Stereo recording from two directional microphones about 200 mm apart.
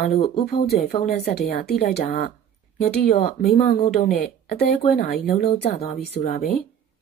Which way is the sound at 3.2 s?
40° left (ahead or behind).